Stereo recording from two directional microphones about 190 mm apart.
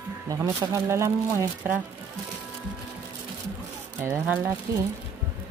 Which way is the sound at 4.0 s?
15° right (ahead or behind).